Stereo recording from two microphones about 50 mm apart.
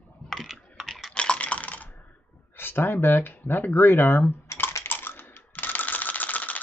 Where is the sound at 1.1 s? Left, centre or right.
Left.